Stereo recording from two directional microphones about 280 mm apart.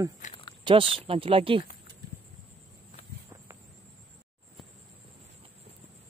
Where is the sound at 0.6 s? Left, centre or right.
Centre.